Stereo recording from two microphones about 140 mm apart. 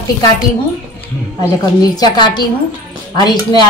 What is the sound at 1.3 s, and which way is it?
A woman's voice, 30° left (ahead or behind).